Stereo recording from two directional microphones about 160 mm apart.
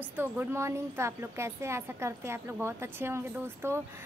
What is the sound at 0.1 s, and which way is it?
Speech, 15° right (ahead or behind).